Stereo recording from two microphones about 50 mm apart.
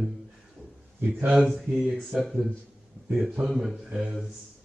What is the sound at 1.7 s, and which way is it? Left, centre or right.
Speech, centre.